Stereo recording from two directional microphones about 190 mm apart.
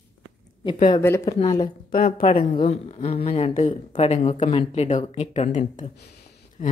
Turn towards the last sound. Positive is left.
turn(degrees=35)  # may be behind; listen again after turning